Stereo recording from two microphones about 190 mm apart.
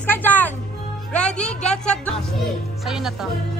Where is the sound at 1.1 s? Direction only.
5° left (ahead or behind).